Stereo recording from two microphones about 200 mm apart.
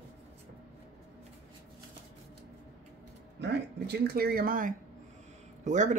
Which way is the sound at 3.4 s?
55° right (ahead or behind).